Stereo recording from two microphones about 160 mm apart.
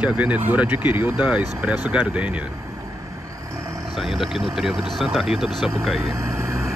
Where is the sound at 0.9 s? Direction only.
30° left (ahead or behind).